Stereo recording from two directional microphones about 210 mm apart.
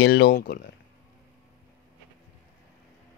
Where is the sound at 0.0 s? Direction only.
50° left (ahead or behind).